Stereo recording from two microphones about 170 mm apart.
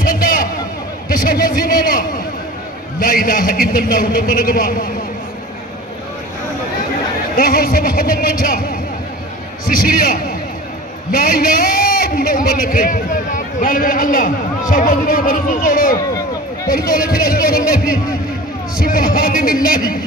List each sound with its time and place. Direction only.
0.0 s a sound: 55° left (ahead or behind)
1.0 s a man's voice: 55° left (ahead or behind)
7.3 s a man's voice: 55° left (ahead or behind)